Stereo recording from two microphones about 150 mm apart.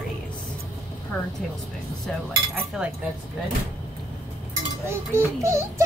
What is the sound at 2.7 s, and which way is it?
Speech, 5° right (ahead or behind).